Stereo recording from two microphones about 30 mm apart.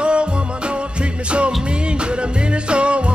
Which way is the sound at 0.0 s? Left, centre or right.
Right.